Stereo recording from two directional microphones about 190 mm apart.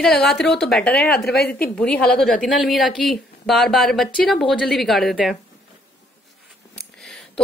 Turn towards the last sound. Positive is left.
turn(degrees=0)  # may be behind; listen again after turning